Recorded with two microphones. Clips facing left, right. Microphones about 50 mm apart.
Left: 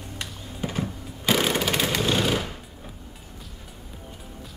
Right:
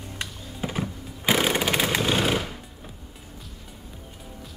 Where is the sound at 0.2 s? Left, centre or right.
Centre.